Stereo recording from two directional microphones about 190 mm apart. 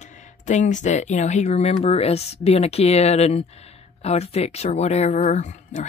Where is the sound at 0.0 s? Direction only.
40° left (ahead or behind).